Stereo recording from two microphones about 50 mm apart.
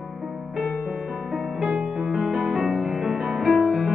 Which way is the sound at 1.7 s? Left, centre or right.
Right.